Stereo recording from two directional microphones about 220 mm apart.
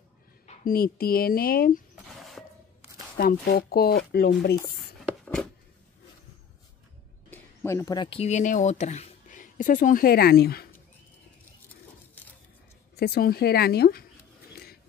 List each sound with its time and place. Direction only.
0.7 s speech: 45° left (ahead or behind)
2.4 s a sound: 5° left (ahead or behind)
3.2 s speech: 45° left (ahead or behind)
4.7 s writing: 5° left (ahead or behind)
7.2 s speech: 10° left (ahead or behind); by 10.7 s 45° left (ahead or behind)
12.9 s speech: 45° left (ahead or behind)
14.5 s a sound: 45° left (ahead or behind)